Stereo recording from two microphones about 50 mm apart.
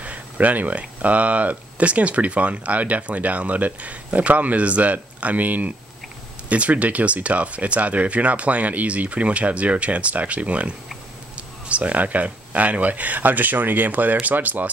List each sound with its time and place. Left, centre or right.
0.0 s speech: right
11.7 s speech: right